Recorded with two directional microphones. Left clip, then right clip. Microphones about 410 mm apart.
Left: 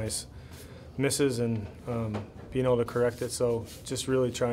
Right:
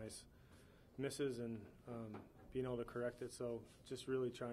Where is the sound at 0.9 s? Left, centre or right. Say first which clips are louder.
Left 16 dB; right.